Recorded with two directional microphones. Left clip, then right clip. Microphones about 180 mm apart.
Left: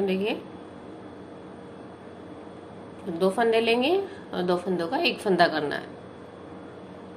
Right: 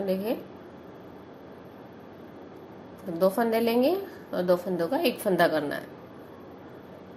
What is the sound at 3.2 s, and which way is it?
A woman's voice, 25° right (ahead or behind).